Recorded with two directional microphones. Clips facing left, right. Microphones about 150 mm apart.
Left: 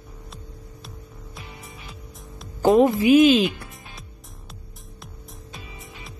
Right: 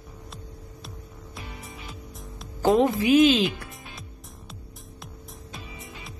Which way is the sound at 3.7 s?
Centre (ahead or behind).